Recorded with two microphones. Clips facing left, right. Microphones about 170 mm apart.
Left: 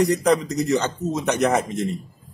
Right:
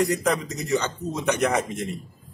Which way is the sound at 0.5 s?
40° left (ahead or behind).